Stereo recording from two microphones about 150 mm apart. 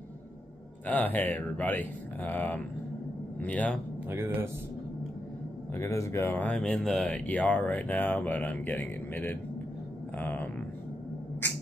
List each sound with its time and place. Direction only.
0.8 s speech: 10° left (ahead or behind)
4.1 s speech: 15° right (ahead or behind)
5.8 s speech: 20° left (ahead or behind)